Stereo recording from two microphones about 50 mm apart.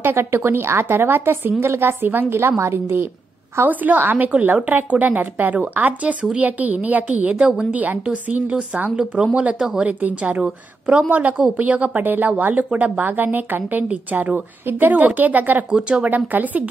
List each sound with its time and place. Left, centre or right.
0.0 s a woman's voice: right
2.3 s a woman's voice: right
3.6 s speech: right
8.9 s speech: right
9.6 s speech: centre
9.8 s speech: right
16.3 s speech: right